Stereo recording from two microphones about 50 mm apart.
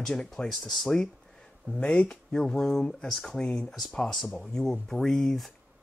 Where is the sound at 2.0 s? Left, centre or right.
Centre.